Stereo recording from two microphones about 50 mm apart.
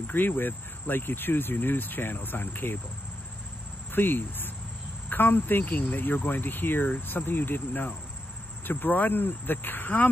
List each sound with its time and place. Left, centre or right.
0.0 s speech: left
3.9 s speech: left